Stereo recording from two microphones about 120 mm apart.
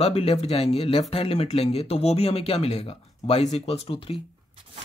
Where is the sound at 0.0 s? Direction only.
55° left (ahead or behind).